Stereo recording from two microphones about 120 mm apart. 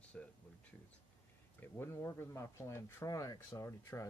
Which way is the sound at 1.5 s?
20° left (ahead or behind).